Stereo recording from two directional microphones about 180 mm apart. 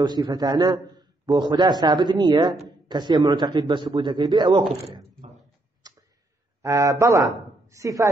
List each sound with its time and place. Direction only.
0.0 s a man's voice: 25° right (ahead or behind)
5.8 s tick: 20° right (ahead or behind)
6.6 s a man's voice: 15° right (ahead or behind)